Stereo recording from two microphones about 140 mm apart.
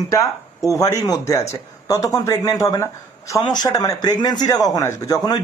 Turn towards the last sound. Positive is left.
turn(degrees=25)  # may be behind; listen again after turning